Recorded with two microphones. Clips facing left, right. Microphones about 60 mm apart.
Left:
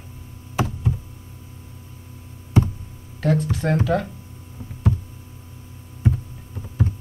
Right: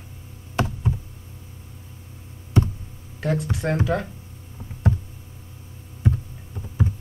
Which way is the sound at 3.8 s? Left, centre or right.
Right.